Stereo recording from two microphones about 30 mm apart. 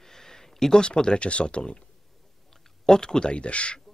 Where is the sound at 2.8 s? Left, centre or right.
Centre.